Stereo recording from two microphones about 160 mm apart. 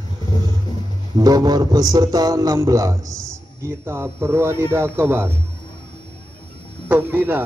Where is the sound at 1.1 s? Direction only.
25° right (ahead or behind).